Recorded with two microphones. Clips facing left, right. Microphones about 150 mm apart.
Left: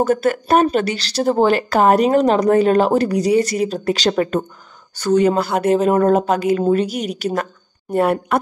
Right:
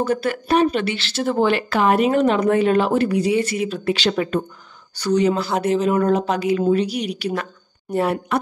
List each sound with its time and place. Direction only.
0.0 s speech: 45° left (ahead or behind)